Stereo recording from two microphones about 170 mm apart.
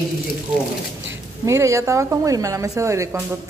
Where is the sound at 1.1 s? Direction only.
15° right (ahead or behind).